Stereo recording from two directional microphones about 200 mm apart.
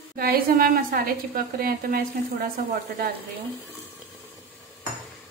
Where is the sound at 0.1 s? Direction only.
45° right (ahead or behind).